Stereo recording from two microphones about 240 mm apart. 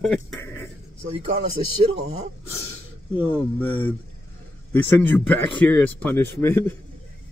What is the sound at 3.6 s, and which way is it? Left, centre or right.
Speech, left.